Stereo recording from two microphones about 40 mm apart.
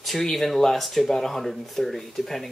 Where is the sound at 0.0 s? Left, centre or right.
Centre.